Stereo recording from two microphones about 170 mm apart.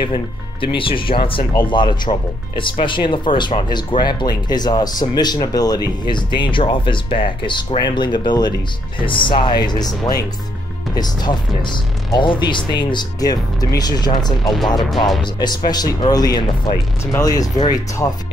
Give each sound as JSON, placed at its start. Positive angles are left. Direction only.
{"t": 0.0, "sound": "speech", "side_deg": 30}